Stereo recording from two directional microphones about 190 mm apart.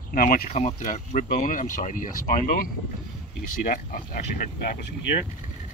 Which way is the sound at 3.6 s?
50° left (ahead or behind).